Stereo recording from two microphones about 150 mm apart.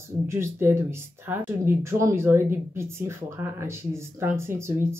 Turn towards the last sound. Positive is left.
turn(degrees=-15)  # may be behind; listen again after turning